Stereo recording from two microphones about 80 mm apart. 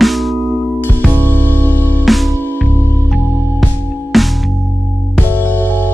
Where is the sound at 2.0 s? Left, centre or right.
Centre.